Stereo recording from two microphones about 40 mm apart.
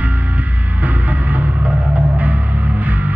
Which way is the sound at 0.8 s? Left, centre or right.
Right.